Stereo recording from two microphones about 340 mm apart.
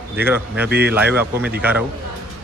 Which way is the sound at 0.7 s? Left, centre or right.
Right.